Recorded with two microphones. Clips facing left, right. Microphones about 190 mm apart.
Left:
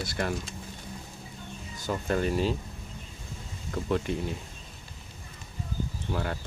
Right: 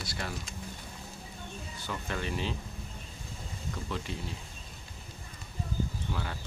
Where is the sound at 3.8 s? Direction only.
55° left (ahead or behind).